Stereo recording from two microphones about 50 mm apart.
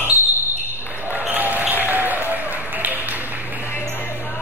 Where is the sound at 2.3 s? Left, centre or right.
Right.